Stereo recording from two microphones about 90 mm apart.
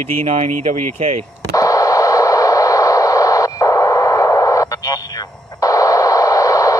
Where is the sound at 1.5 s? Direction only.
40° left (ahead or behind).